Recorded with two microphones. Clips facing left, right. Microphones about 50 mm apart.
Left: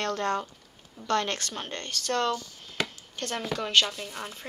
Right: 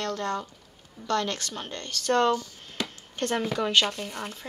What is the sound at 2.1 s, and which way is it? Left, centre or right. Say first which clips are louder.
Speech: right 5 dB; right.